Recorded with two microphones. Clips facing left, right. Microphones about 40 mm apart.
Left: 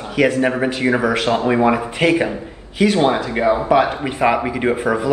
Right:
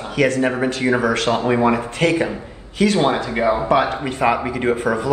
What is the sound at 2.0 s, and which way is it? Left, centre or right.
Speech, left.